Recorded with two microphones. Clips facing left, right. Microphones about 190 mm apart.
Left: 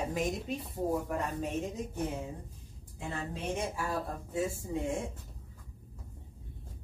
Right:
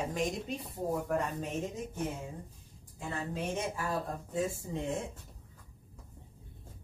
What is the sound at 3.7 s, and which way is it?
Speech, 10° left (ahead or behind).